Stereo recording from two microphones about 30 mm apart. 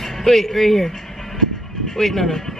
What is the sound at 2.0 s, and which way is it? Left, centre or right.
Speech, centre.